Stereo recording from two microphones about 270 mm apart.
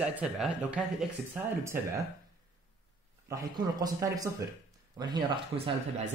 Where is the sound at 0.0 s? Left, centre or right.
Centre.